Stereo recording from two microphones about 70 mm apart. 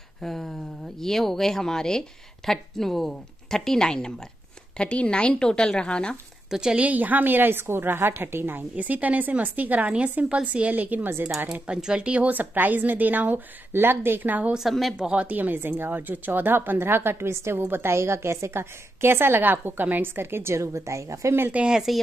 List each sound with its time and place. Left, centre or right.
0.2 s a woman's voice: centre
6.5 s a woman's voice: centre
6.9 s a woman's voice: right
11.5 s a woman's voice: centre
14.5 s speech: centre
15.0 s a woman's voice: centre; by 21.4 s right
21.4 s a woman's voice: right
21.6 s speech: centre